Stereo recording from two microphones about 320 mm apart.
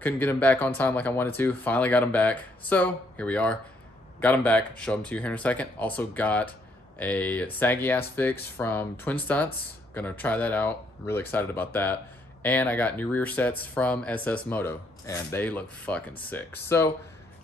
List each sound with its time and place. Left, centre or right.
0.0 s speech: centre